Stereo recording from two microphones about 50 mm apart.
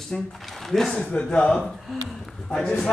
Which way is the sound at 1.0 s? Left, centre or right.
Left.